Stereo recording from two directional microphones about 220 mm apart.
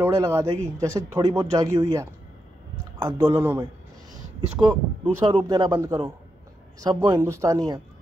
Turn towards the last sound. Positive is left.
turn(degrees=-15)  # may be behind; listen again after turning